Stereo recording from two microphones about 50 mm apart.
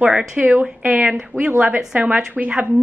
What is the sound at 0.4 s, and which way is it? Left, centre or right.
Speech, right.